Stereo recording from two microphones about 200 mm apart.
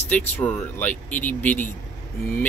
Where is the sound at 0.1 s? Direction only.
5° left (ahead or behind).